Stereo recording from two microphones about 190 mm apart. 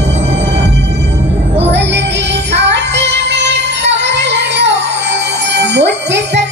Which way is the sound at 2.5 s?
65° right (ahead or behind).